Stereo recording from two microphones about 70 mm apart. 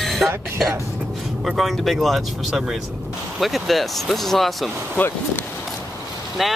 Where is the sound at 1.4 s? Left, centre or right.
Centre.